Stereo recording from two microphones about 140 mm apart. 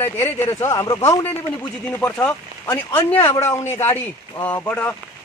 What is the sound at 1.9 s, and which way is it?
Speech, 15° left (ahead or behind).